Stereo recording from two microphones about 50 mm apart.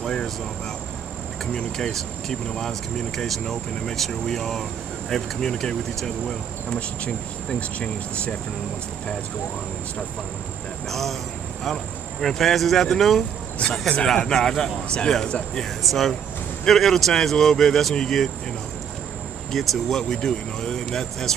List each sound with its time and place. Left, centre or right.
0.0 s a sound: centre
1.5 s speech: centre
10.9 s speech: centre
19.5 s speech: centre